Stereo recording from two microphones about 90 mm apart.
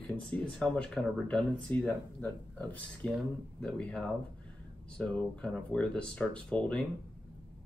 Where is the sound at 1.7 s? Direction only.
15° left (ahead or behind).